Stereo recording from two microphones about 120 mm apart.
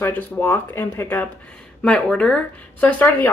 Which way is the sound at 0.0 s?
15° left (ahead or behind).